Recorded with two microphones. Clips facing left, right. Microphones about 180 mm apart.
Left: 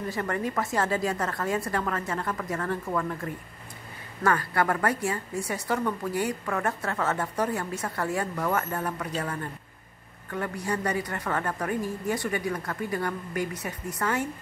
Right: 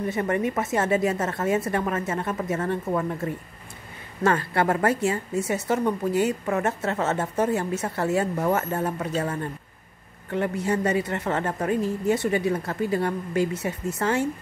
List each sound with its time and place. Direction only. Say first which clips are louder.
0.1 s a woman's voice: right 4 dB; 20° right (ahead or behind)